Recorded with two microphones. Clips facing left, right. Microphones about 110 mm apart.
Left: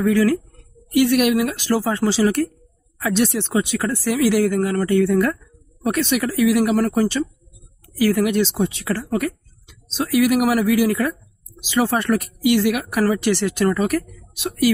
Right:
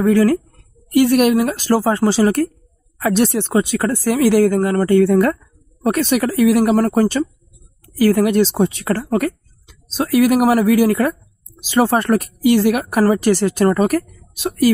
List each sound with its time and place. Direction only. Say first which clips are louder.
0.0 s speech: right 3 dB; 45° right (ahead or behind)